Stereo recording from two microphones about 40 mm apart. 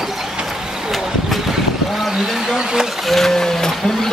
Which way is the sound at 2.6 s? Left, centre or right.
Centre.